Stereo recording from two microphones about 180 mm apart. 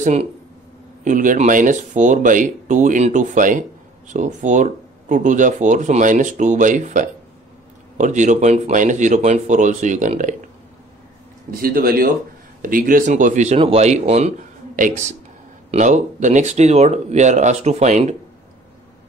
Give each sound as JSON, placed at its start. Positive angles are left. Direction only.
{"t": 0.0, "sound": "speech", "side_deg": -40}
{"t": 11.5, "sound": "speech", "side_deg": -55}
{"t": 15.7, "sound": "speech", "side_deg": -40}